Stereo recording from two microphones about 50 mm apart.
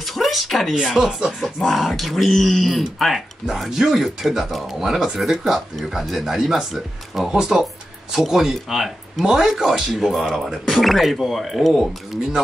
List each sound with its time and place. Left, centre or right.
0.0 s a sound: centre
0.8 s speech: centre
10.7 s speech: centre